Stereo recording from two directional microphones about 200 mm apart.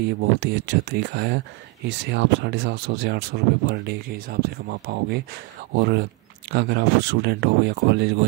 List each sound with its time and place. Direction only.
0.4 s speech: 55° right (ahead or behind)